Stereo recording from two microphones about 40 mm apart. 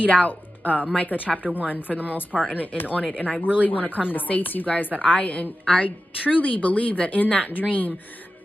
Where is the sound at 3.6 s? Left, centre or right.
Left.